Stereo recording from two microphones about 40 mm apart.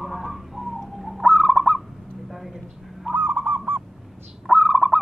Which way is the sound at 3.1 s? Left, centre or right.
Right.